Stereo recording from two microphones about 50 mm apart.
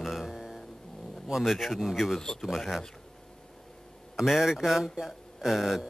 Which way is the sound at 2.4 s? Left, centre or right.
Centre.